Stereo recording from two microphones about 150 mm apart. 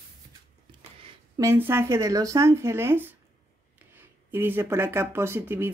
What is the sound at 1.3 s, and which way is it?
Speech, 15° right (ahead or behind).